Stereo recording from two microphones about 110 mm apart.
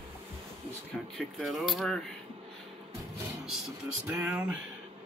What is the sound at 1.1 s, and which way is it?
Speech, centre (ahead or behind).